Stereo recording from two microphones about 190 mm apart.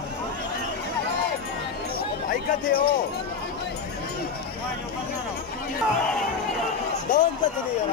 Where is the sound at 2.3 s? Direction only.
50° left (ahead or behind).